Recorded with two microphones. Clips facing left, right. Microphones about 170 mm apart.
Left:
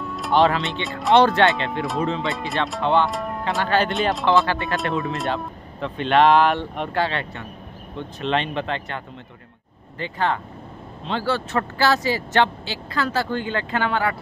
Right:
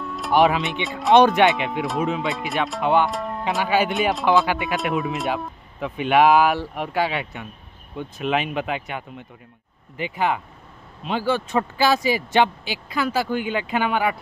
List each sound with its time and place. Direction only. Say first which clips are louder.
0.0 s music: left 1 dB; centre (ahead or behind)
0.3 s speech: right 1 dB; 15° right (ahead or behind)
0.8 s speech: right 2 dB; centre (ahead or behind)
1.1 s speech: right 1 dB; 15° right (ahead or behind)
1.7 s speech: even; centre (ahead or behind)
2.8 s speech: even; 10° right (ahead or behind)
3.1 s speech: even; centre (ahead or behind)
4.5 s speech: right 1 dB; 15° right (ahead or behind)
5.0 s speech: even; centre (ahead or behind)